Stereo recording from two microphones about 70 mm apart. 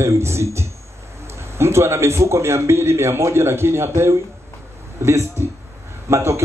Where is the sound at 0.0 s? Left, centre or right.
Right.